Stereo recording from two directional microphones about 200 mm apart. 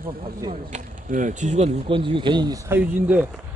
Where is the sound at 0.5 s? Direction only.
40° right (ahead or behind); by 2.8 s 20° right (ahead or behind).